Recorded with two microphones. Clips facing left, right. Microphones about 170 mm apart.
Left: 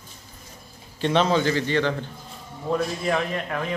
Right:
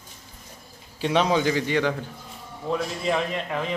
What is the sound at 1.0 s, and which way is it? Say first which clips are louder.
A man's voice: left 1 dB; 10° right (ahead or behind).